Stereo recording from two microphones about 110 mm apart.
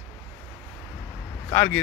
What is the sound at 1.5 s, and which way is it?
Speech, 20° left (ahead or behind).